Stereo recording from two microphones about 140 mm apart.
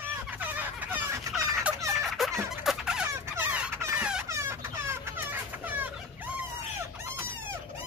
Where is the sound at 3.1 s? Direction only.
15° right (ahead or behind).